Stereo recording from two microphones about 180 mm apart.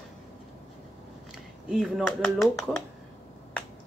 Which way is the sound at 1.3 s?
Centre (ahead or behind).